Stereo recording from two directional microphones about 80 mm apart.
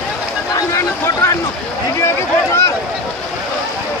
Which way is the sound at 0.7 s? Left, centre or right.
Left.